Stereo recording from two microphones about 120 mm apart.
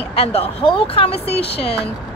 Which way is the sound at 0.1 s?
55° left (ahead or behind).